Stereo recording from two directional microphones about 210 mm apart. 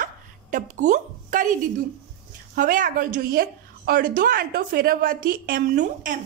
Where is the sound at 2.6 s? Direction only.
40° right (ahead or behind).